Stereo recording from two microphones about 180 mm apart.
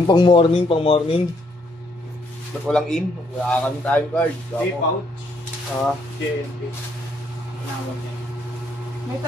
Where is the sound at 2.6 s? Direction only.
Centre (ahead or behind).